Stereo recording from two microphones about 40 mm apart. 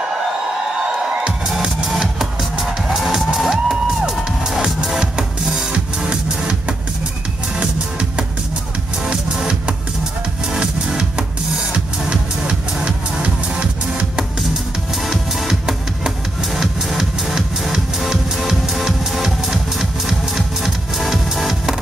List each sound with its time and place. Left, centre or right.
2.9 s music: centre
4.6 s music: centre
7.6 s music: right
15.0 s music: centre